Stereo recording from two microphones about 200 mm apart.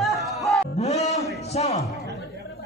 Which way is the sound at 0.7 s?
30° left (ahead or behind).